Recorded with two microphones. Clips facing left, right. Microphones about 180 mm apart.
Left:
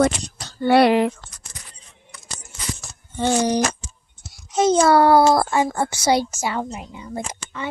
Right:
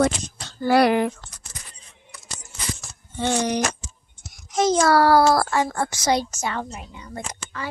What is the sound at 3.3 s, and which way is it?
A child's voice, 30° left (ahead or behind).